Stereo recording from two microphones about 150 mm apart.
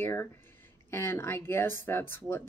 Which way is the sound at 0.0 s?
15° left (ahead or behind).